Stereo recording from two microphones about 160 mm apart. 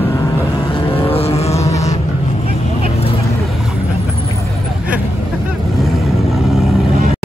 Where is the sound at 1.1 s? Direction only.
40° left (ahead or behind).